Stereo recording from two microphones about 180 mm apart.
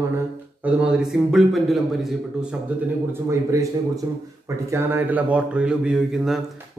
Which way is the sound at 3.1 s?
15° right (ahead or behind).